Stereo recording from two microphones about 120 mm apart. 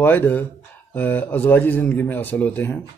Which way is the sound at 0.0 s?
15° left (ahead or behind).